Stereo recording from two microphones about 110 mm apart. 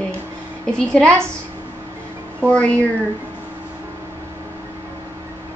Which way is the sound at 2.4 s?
10° left (ahead or behind).